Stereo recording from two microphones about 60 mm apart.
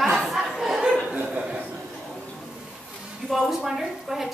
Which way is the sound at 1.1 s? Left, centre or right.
Centre.